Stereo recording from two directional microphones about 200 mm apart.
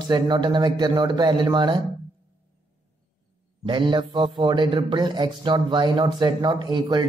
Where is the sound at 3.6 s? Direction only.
25° right (ahead or behind).